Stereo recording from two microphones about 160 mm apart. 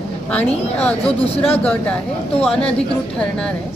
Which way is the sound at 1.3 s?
40° left (ahead or behind).